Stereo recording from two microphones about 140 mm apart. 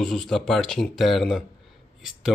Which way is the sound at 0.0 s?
Centre (ahead or behind).